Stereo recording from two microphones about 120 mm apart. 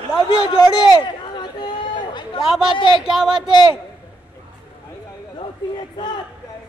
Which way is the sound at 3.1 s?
5° right (ahead or behind).